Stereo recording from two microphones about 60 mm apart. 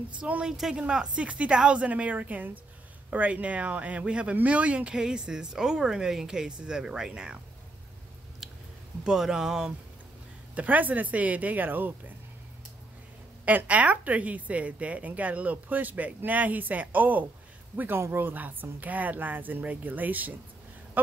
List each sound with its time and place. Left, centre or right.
0.1 s a woman's voice: centre
8.4 s chewing: centre
9.0 s speech: centre
10.5 s a woman's voice: right
13.5 s a woman's voice: right